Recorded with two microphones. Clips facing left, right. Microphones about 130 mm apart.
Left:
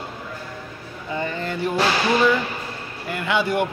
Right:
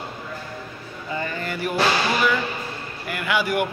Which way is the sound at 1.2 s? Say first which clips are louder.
Left 3 dB; 25° left (ahead or behind).